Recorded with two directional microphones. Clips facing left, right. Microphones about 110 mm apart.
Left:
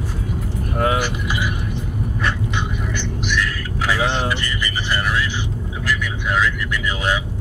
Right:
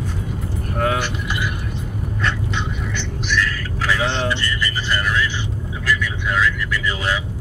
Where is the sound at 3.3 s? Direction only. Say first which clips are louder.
Right 3 dB; 15° left (ahead or behind).